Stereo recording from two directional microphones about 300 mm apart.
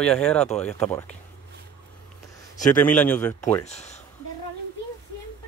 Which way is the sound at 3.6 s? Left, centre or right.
Left.